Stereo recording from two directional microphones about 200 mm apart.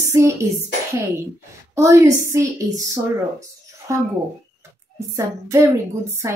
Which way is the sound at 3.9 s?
15° right (ahead or behind).